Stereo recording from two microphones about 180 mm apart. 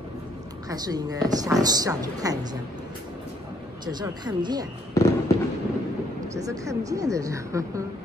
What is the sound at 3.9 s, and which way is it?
Speech, 25° right (ahead or behind).